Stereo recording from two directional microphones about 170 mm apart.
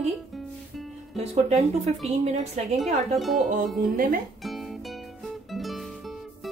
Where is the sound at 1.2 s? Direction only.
40° right (ahead or behind).